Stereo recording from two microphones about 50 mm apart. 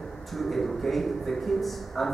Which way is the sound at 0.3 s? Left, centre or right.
Centre.